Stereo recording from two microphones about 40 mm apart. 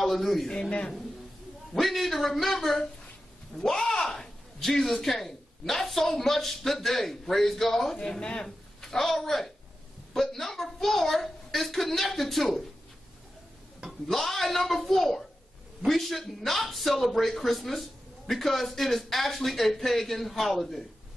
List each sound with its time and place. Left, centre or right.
0.0 s a man's voice: centre
0.5 s a man's voice: left
1.7 s speech: centre
4.0 s a sound: centre
5.0 s speech: centre
8.2 s a man's voice: left
8.8 s speech: centre
13.8 s speech: centre